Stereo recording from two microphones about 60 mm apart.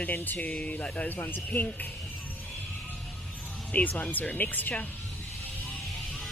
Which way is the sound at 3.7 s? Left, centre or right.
Left.